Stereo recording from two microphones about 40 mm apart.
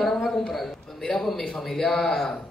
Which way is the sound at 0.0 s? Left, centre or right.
Centre.